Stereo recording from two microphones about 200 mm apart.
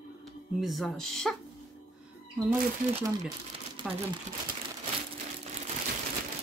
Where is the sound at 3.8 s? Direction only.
25° right (ahead or behind).